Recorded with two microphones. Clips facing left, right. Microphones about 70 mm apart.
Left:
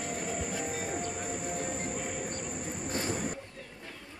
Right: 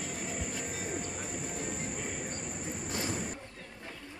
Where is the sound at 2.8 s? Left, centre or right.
Left.